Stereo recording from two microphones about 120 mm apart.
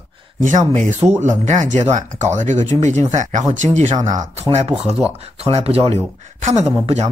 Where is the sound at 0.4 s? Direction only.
90° right.